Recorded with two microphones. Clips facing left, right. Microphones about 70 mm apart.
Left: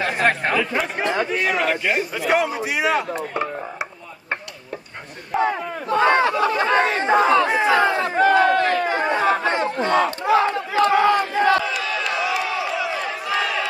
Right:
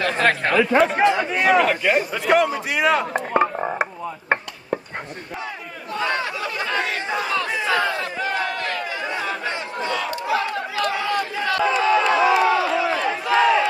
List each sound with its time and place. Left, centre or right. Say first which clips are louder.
0.0 s speech: even; centre
1.4 s a man's voice: right 4 dB; centre
3.1 s a sound: right 5 dB; right
5.4 s battle cry: left 10 dB; left
6.4 s speech: left 7 dB; left
8.3 s chatter: left 10 dB; left
11.1 s crowd: left 6 dB; left
11.6 s crowd: right 7 dB; right